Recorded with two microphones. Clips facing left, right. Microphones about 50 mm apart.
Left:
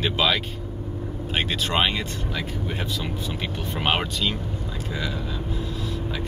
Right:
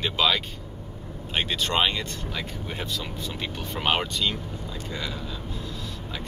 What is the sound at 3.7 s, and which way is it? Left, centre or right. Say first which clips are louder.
Speech: left 1 dB; centre.